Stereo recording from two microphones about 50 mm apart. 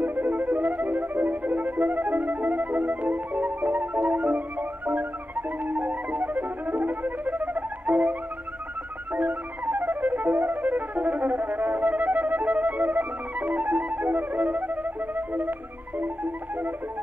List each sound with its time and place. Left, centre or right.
0.0 s music: right